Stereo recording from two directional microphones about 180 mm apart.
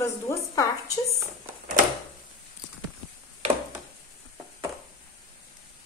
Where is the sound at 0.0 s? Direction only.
15° left (ahead or behind).